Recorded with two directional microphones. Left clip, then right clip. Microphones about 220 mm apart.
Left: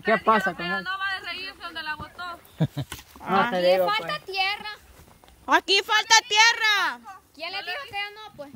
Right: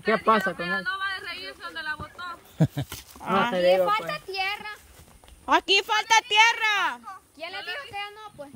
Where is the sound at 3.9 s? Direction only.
15° left (ahead or behind).